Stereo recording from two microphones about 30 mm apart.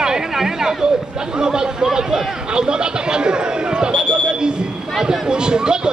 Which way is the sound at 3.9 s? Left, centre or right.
Left.